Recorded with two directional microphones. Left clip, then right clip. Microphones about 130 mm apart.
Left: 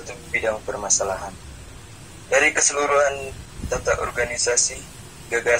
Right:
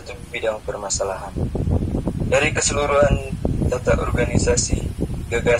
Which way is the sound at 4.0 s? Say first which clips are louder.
Right 1 dB; 10° left (ahead or behind).